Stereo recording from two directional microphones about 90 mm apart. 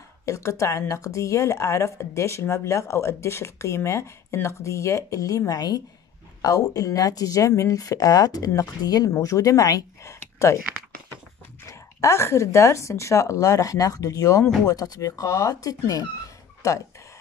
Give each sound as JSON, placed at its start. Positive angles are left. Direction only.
{"t": 0.2, "sound": "a woman's voice", "side_deg": 35}
{"t": 11.6, "sound": "a woman's voice", "side_deg": 35}
{"t": 14.4, "sound": "speech", "side_deg": 10}
{"t": 14.7, "sound": "a woman's voice", "side_deg": 40}